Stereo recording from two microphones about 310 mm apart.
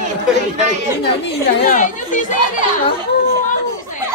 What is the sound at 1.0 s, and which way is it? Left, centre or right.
Speech, left.